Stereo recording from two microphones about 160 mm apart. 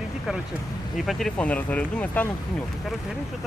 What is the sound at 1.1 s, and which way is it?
Speech, 5° left (ahead or behind).